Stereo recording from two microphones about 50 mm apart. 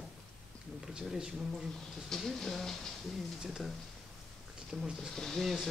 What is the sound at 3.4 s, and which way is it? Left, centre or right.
Speech, centre.